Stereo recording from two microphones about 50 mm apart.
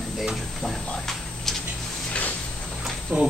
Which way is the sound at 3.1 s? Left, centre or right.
Right.